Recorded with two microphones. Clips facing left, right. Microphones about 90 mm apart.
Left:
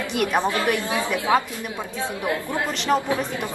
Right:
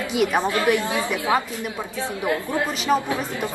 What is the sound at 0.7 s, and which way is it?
Speech, 15° right (ahead or behind).